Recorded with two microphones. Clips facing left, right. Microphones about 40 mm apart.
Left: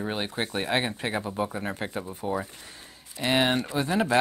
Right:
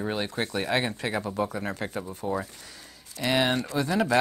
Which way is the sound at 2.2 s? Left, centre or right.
Left.